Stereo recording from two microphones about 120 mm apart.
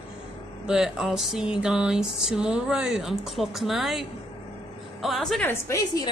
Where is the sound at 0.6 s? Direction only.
5° right (ahead or behind).